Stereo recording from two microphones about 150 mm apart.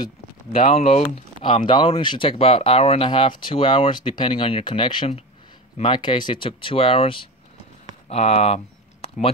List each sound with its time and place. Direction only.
0.7 s speech: 45° left (ahead or behind)